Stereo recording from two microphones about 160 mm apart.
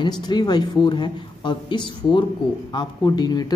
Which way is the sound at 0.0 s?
25° left (ahead or behind).